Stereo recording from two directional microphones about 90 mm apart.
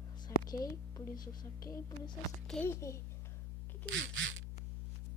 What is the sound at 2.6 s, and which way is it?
Speech, 30° left (ahead or behind).